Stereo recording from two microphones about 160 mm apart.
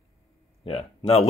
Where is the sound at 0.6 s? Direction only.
40° left (ahead or behind).